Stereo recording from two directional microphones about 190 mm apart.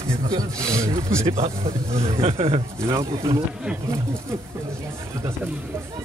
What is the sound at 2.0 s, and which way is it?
Speech, 30° right (ahead or behind).